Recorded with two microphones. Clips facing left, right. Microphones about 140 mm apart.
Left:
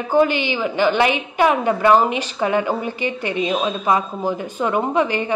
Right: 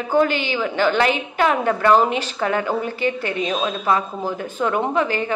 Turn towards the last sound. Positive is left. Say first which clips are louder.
# left 1 dB
turn(degrees=15)  # may be behind; listen again after turning